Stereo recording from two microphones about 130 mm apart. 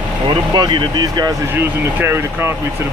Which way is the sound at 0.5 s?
35° right (ahead or behind).